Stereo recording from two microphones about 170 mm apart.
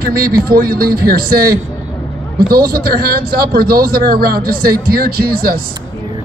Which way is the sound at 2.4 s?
60° right (ahead or behind).